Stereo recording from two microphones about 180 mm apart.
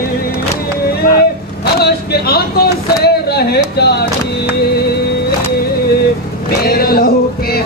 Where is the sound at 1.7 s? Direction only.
60° left (ahead or behind).